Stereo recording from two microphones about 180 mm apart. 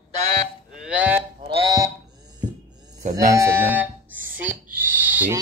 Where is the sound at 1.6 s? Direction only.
20° right (ahead or behind).